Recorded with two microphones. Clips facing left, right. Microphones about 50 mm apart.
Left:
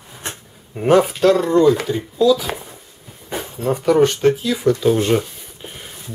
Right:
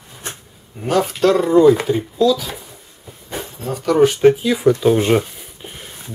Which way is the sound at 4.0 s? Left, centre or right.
Centre.